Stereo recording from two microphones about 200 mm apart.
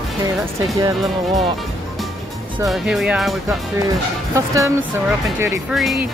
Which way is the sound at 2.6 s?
Centre (ahead or behind).